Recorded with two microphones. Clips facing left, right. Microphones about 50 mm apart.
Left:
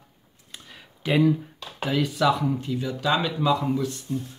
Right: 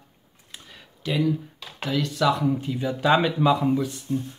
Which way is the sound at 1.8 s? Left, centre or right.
Centre.